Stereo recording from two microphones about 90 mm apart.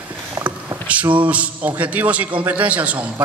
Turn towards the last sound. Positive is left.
turn(degrees=-15)  # may be behind; listen again after turning